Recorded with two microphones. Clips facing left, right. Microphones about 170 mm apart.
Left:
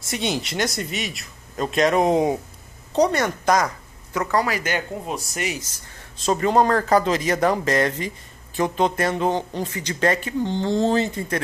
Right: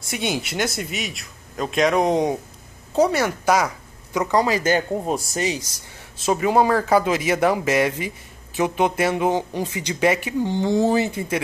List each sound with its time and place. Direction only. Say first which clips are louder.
0.0 s a man's voice: even; centre (ahead or behind); by 4.6 s 20° right (ahead or behind)
4.6 s speech: right 6 dB; 35° right (ahead or behind)
6.2 s a man's voice: even; 5° right (ahead or behind)